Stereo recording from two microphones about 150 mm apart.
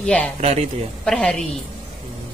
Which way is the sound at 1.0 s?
5° left (ahead or behind).